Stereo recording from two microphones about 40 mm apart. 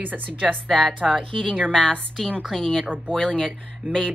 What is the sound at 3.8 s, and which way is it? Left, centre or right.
Speech, right.